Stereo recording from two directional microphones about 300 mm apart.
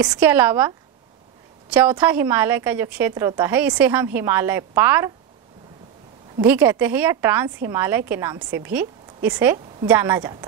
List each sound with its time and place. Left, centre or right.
0.0 s a woman's voice: centre
6.4 s a woman's voice: centre